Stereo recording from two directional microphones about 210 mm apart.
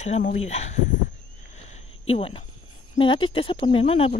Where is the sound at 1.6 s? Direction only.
30° left (ahead or behind).